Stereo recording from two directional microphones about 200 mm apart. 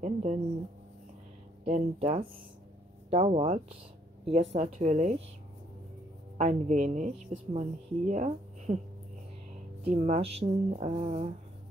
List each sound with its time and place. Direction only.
0.0 s a woman's voice: 35° right (ahead or behind)
1.6 s a woman's voice: 35° right (ahead or behind)
6.3 s a woman's voice: 35° right (ahead or behind)
9.8 s a woman's voice: 35° right (ahead or behind)